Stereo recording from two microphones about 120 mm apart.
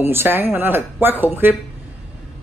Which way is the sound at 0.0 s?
20° right (ahead or behind).